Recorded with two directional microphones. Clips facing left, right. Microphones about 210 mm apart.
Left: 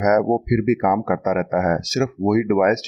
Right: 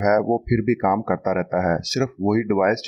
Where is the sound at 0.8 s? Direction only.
40° left (ahead or behind).